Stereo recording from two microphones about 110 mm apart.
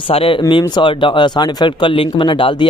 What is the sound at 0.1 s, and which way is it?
Speech, 60° left (ahead or behind).